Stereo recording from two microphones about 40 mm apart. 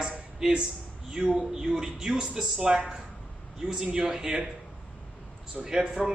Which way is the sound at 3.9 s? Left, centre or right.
Centre.